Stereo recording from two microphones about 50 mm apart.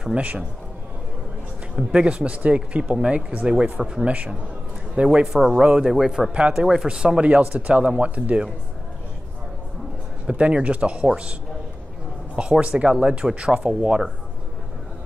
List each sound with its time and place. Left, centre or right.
0.0 s speech: right
1.8 s speech: centre
10.2 s speech: right
12.4 s speech: right